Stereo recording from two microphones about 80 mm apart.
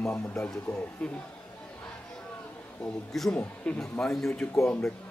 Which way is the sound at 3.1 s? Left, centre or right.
Centre.